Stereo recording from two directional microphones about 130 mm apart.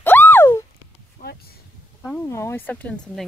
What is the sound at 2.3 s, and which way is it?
Speech, 20° left (ahead or behind).